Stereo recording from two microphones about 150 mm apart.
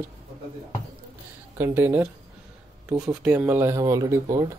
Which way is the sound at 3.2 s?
10° right (ahead or behind).